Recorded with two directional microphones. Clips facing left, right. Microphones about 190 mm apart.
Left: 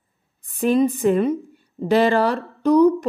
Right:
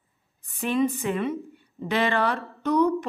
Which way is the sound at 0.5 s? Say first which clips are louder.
Left 6 dB; 40° left (ahead or behind).